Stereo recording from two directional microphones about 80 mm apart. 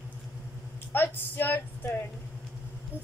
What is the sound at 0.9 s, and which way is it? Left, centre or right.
Speech, left.